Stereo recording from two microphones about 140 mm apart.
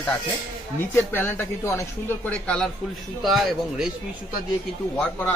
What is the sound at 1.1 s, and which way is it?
Speech, 15° left (ahead or behind).